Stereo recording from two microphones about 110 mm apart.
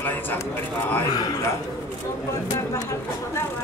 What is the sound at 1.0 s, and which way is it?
Speech, 40° left (ahead or behind).